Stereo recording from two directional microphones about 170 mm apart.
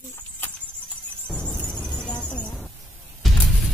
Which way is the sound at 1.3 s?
5° left (ahead or behind).